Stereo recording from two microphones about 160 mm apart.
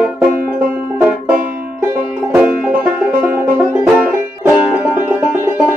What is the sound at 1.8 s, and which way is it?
Music, 15° right (ahead or behind).